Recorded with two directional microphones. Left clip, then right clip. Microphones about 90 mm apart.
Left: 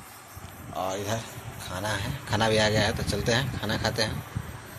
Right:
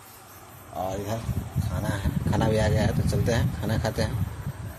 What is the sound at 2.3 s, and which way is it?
A man's voice, 40° right (ahead or behind).